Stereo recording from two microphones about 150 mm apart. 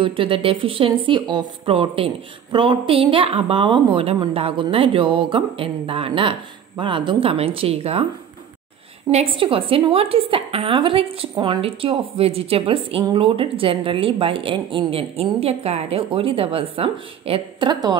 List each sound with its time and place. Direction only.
0.0 s a woman's voice: 35° right (ahead or behind)
9.1 s a woman's voice: 40° right (ahead or behind)